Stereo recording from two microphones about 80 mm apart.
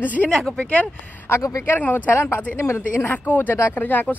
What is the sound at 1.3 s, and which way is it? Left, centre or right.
A woman's voice, left.